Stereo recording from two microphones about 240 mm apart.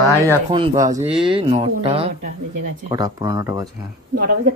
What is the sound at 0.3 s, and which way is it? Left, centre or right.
Speech, centre.